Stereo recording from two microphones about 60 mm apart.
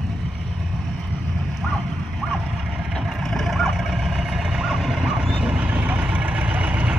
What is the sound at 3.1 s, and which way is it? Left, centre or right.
Vehicle, centre.